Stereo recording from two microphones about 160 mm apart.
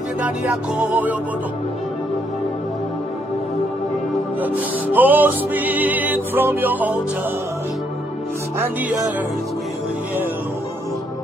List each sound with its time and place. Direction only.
0.2 s music: 10° right (ahead or behind)
4.4 s music: 10° right (ahead or behind)
8.5 s music: 10° right (ahead or behind)